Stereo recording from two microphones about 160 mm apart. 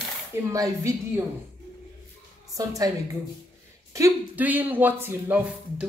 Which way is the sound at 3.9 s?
15° right (ahead or behind).